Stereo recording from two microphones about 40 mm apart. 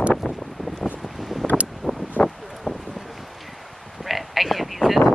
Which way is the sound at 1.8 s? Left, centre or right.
Left.